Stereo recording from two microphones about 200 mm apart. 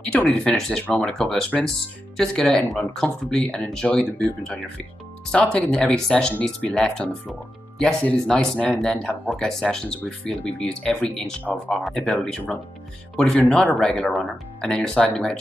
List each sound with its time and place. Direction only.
0.0 s speech: 5° left (ahead or behind)